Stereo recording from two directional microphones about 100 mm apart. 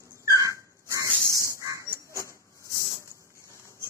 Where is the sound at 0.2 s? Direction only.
35° right (ahead or behind).